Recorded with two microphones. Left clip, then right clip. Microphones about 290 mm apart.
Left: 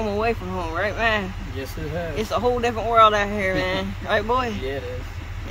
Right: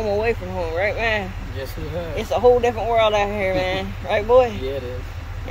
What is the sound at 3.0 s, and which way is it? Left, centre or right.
Speech, left.